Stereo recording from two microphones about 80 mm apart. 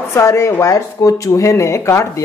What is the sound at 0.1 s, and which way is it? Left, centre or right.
Speech, left.